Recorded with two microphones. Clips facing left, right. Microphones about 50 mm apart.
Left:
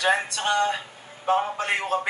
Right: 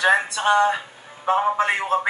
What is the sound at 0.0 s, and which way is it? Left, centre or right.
Speech, right.